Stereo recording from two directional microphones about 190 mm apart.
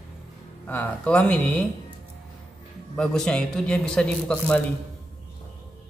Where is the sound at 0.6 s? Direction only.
10° left (ahead or behind).